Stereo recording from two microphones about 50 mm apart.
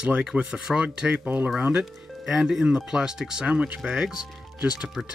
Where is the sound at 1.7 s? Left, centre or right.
Centre.